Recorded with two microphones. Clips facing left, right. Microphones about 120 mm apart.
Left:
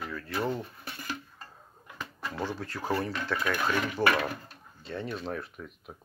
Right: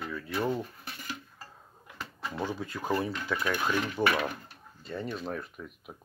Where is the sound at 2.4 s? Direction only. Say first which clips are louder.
Even; 15° right (ahead or behind).